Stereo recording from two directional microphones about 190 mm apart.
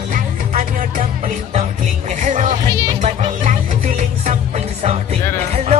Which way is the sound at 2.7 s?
25° right (ahead or behind).